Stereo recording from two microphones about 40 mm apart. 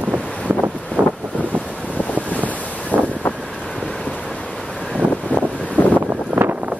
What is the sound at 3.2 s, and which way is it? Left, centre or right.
Wind noise, left.